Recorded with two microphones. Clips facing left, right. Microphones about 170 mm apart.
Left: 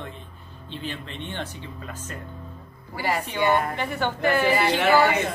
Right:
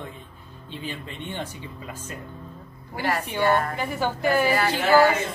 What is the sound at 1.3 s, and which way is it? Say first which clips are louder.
Speech: right 2 dB; 10° right (ahead or behind).